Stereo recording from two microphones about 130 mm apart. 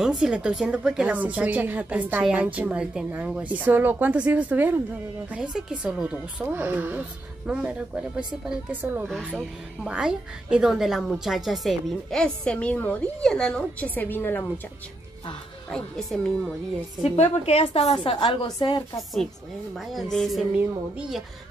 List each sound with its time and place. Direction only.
0.2 s a woman's voice: 10° right (ahead or behind)
9.0 s a woman's voice: 5° left (ahead or behind)
15.7 s a woman's voice: centre (ahead or behind)
17.1 s a woman's voice: 50° left (ahead or behind)
19.9 s a woman's voice: centre (ahead or behind)